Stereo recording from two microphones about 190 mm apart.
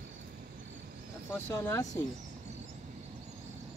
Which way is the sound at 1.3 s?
15° left (ahead or behind).